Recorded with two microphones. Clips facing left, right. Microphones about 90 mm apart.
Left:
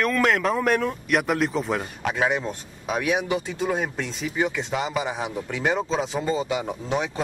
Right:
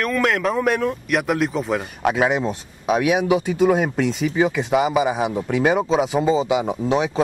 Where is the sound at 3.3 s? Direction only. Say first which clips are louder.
Right 8 dB; 65° right (ahead or behind).